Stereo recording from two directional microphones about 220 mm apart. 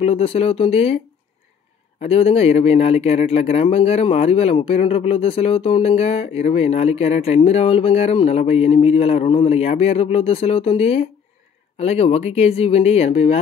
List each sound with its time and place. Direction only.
0.0 s speech: 25° left (ahead or behind)
2.0 s speech: 25° left (ahead or behind)